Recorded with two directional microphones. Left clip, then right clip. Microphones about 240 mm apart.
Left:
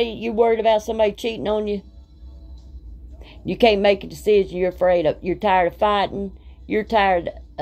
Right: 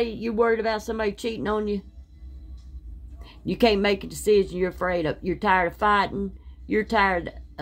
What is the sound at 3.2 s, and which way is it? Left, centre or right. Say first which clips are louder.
A woman's voice: left 4 dB; right.